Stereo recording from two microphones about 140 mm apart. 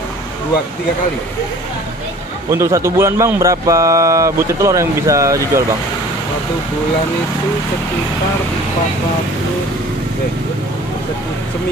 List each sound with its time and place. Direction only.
2.5 s speech: 20° right (ahead or behind)